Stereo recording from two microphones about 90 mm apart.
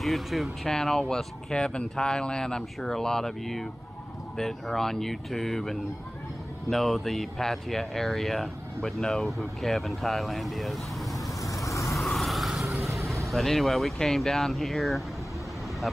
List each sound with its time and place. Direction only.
0.0 s speech: centre (ahead or behind)
11.4 s vehicle: 35° left (ahead or behind)
11.9 s vehicle: centre (ahead or behind)
13.3 s speech: centre (ahead or behind)